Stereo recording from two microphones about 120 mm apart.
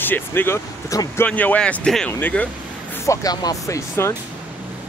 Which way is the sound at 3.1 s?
30° left (ahead or behind).